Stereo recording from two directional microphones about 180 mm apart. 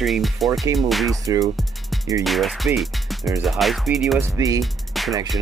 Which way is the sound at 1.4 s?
Centre (ahead or behind).